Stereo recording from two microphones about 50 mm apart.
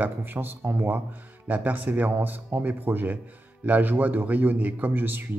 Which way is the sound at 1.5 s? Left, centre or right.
Right.